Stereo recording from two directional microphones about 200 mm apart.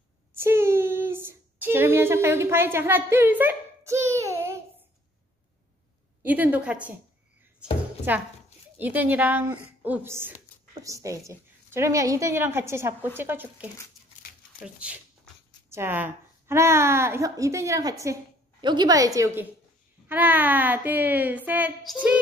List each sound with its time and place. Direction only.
0.3 s child singing: 10° right (ahead or behind)
6.2 s speech: 10° right (ahead or behind)
8.7 s speech: 10° right (ahead or behind)